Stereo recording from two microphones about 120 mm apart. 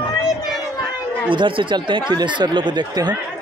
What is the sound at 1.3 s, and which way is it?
Speech, 45° right (ahead or behind).